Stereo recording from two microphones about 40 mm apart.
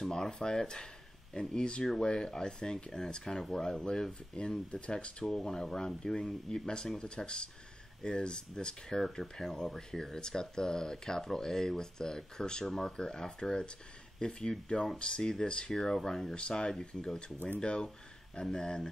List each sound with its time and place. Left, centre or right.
0.0 s speech: centre; by 5.1 s left
5.2 s speech: centre
16.3 s speech: left